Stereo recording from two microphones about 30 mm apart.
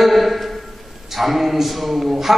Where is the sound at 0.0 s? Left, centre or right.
Centre.